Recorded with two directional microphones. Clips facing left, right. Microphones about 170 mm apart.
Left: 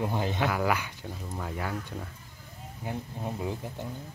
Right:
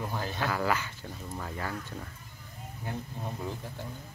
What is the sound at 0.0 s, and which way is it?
Speech, 20° left (ahead or behind).